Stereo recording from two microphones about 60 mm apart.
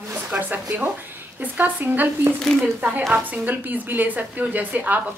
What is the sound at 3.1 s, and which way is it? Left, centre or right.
A woman's voice, right.